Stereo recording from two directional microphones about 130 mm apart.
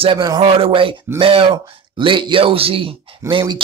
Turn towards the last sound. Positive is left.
turn(degrees=-40)  # may be behind; listen again after turning